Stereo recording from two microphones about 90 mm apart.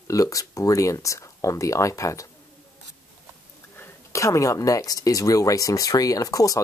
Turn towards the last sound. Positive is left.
turn(degrees=40)  # may be behind; listen again after turning